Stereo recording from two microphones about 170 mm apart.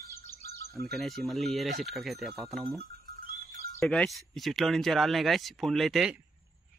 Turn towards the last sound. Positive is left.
turn(degrees=-5)  # may be behind; listen again after turning